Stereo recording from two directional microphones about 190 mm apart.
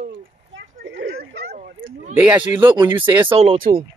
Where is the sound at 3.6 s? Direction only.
50° right (ahead or behind).